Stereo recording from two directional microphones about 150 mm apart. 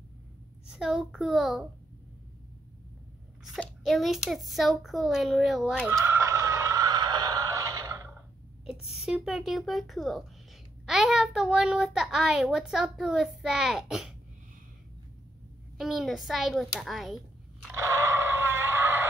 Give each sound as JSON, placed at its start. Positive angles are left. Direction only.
{"t": 0.7, "sound": "a child's voice", "side_deg": -5}
{"t": 3.5, "sound": "a child's voice", "side_deg": 0}
{"t": 5.9, "sound": "a sound", "side_deg": -20}
{"t": 8.6, "sound": "a child's voice", "side_deg": -5}
{"t": 15.8, "sound": "a child's voice", "side_deg": 0}
{"t": 17.7, "sound": "a sound", "side_deg": -20}